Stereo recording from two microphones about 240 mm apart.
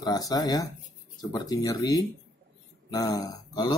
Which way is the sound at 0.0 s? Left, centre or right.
Centre.